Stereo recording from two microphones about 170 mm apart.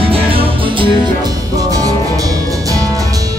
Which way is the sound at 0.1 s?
35° right (ahead or behind).